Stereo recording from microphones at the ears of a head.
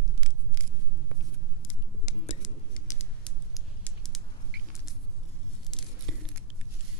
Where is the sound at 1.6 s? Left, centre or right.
Left.